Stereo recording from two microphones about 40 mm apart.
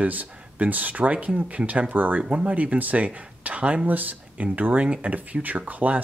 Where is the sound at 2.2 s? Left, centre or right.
Right.